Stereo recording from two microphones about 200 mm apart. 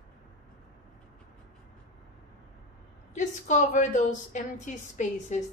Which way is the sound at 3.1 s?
40° left (ahead or behind).